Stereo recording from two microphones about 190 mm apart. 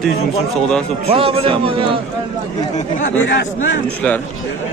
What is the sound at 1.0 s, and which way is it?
Speech, 30° right (ahead or behind).